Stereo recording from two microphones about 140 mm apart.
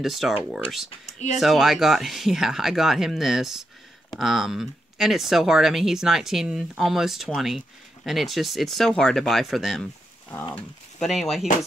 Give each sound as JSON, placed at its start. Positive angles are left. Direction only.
{"t": 0.0, "sound": "speech", "side_deg": 0}
{"t": 0.8, "sound": "speech", "side_deg": 50}
{"t": 1.4, "sound": "speech", "side_deg": 0}